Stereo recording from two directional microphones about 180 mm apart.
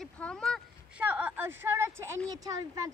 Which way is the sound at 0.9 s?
10° right (ahead or behind).